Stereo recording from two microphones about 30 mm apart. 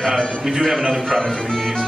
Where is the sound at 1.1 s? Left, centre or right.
Centre.